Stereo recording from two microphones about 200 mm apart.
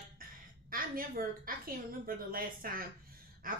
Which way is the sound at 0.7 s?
45° right (ahead or behind).